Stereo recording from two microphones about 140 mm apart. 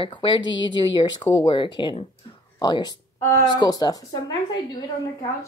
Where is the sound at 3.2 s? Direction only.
20° left (ahead or behind).